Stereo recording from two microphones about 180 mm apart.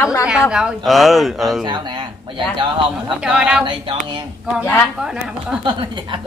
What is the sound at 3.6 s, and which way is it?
Speech, 25° right (ahead or behind).